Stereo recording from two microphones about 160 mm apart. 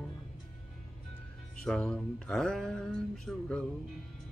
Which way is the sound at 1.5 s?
5° left (ahead or behind).